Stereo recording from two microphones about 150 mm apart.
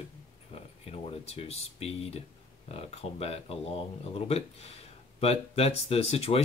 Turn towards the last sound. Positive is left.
turn(degrees=45)  # may be behind; listen again after turning